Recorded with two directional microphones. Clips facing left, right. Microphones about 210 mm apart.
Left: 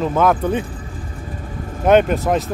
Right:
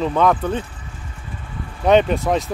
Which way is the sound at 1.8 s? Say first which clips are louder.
Left 1 dB; 5° left (ahead or behind).